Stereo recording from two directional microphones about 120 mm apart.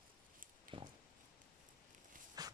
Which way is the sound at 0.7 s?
45° right (ahead or behind).